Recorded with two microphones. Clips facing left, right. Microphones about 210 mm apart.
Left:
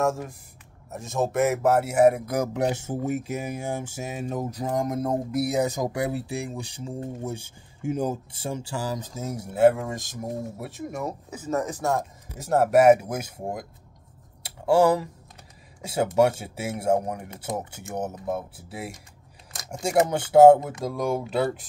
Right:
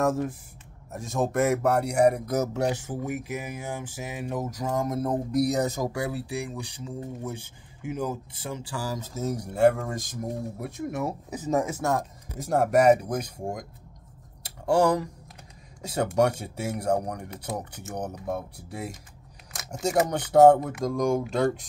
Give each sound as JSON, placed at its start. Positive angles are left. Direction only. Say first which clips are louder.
{"t": 0.0, "sound": "speech", "louder": "right 1 dB", "side_deg": 0}
{"t": 2.6, "sound": "speech", "louder": "left 2 dB", "side_deg": 25}
{"t": 5.3, "sound": "speech", "louder": "right 2 dB", "side_deg": 5}
{"t": 11.2, "sound": "speech", "louder": "right 2 dB", "side_deg": -15}
{"t": 11.9, "sound": "speech", "louder": "left 1 dB", "side_deg": 0}
{"t": 14.7, "sound": "speech", "louder": "left 2 dB", "side_deg": 5}